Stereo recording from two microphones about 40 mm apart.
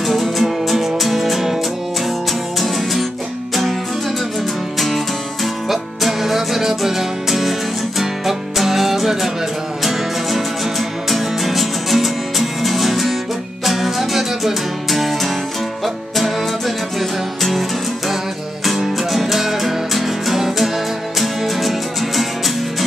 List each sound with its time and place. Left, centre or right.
0.0 s music: centre
2.6 s music: centre
4.7 s music: centre